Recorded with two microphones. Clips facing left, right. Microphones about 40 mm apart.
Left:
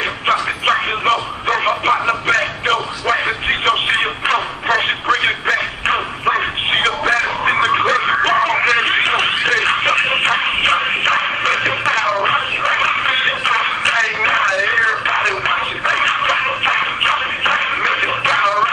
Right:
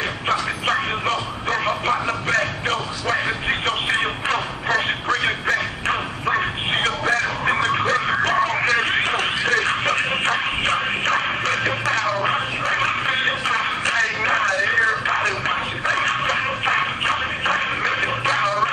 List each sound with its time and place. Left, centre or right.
0.3 s a sound: left
8.7 s radio: left
10.2 s shuffle: left
11.9 s a sound: left
14.6 s music: left
17.0 s music: left